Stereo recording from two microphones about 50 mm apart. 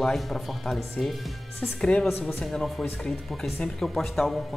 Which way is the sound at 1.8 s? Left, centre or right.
Centre.